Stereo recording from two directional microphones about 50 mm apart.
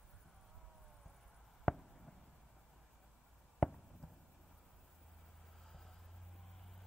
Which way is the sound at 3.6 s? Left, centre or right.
Centre.